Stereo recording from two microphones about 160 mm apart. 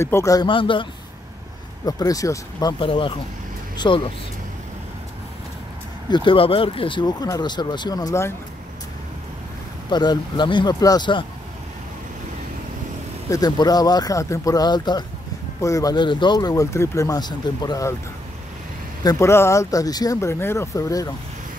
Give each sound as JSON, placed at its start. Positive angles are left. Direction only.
{"t": 0.0, "sound": "speech", "side_deg": 20}
{"t": 1.9, "sound": "speech", "side_deg": 20}
{"t": 2.8, "sound": "speech", "side_deg": 30}
{"t": 6.0, "sound": "speech", "side_deg": 30}
{"t": 9.8, "sound": "speech", "side_deg": 30}
{"t": 13.3, "sound": "speech", "side_deg": 25}
{"t": 19.0, "sound": "speech", "side_deg": 15}